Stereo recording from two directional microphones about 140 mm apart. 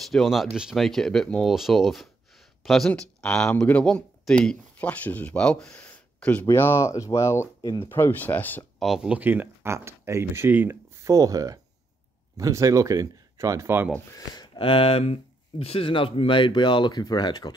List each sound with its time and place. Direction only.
0.0 s speech: centre (ahead or behind)
8.7 s speech: centre (ahead or behind); by 13.8 s 20° right (ahead or behind)
14.1 s speech: 30° left (ahead or behind)